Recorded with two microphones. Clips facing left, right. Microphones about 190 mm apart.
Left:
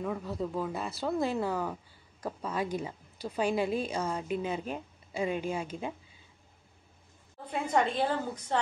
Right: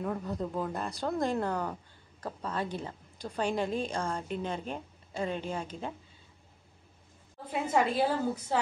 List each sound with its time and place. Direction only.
0.0 s speech: centre (ahead or behind)
7.5 s a woman's voice: 5° right (ahead or behind)